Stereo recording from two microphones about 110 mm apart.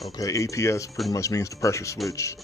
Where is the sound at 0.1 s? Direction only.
30° left (ahead or behind).